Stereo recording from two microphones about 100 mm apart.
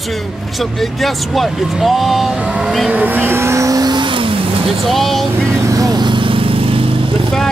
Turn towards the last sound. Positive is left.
turn(degrees=-65)  # may be behind; listen again after turning